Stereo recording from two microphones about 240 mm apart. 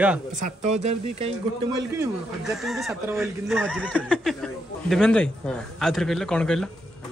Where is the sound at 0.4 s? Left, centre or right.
Right.